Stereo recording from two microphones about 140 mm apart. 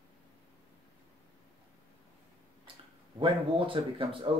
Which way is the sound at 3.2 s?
40° right (ahead or behind).